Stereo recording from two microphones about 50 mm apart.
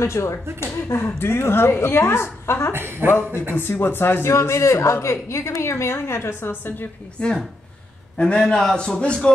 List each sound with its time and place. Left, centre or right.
0.0 s a man's voice: left
2.7 s speech: right
3.5 s a man's voice: left
7.2 s speech: left